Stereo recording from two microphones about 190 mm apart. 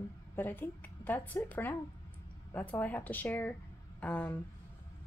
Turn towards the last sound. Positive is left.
turn(degrees=5)  # may be behind; listen again after turning